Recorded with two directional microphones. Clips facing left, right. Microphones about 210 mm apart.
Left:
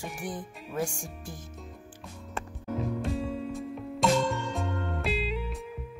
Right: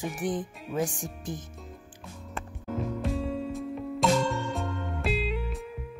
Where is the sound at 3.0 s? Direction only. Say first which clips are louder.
Right 1 dB; centre (ahead or behind).